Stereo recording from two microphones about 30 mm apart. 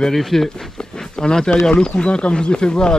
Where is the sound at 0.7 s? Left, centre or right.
Left.